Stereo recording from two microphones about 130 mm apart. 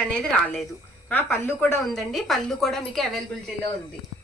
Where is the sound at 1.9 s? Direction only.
Centre (ahead or behind).